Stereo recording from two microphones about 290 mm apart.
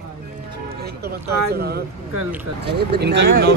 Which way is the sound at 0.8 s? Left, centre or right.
Right.